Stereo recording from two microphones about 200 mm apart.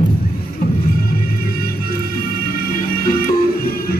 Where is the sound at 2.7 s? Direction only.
45° left (ahead or behind).